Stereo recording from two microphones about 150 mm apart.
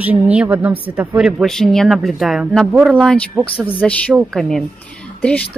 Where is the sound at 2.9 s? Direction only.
5° left (ahead or behind).